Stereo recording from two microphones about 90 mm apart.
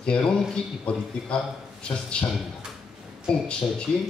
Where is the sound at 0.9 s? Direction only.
15° left (ahead or behind).